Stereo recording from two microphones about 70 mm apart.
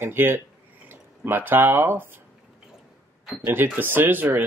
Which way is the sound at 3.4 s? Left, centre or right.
Right.